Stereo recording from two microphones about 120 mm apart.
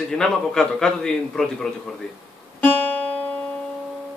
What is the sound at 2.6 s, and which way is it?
Music, 15° left (ahead or behind).